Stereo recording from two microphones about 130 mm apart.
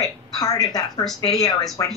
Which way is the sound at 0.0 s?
30° left (ahead or behind).